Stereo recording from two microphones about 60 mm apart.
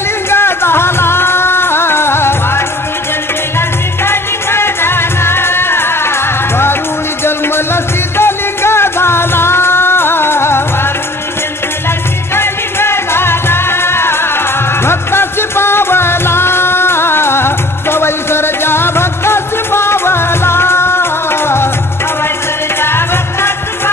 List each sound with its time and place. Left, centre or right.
0.3 s music: left
7.2 s music: left
12.4 s music: left
22.8 s music: left